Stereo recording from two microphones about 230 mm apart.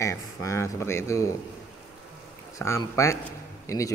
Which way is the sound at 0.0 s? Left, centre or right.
Centre.